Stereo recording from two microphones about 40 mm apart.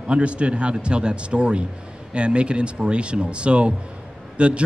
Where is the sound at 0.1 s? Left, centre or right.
Right.